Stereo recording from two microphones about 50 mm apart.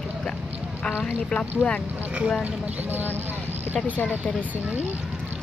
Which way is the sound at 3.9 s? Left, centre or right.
Left.